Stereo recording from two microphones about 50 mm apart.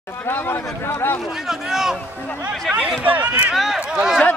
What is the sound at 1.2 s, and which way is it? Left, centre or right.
Speech, centre.